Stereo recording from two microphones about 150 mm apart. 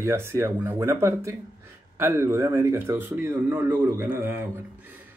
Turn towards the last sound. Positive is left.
turn(degrees=-10)  # may be behind; listen again after turning